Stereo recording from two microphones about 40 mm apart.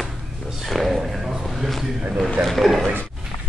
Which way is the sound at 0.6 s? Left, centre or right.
Centre.